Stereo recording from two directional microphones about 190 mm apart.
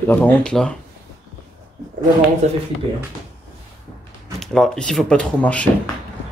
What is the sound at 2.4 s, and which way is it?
Speech, 35° right (ahead or behind).